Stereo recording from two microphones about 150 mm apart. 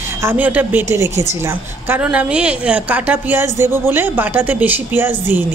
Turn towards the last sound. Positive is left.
turn(degrees=-15)  # may be behind; listen again after turning